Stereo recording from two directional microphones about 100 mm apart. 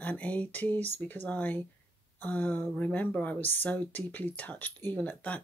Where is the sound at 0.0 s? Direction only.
15° left (ahead or behind).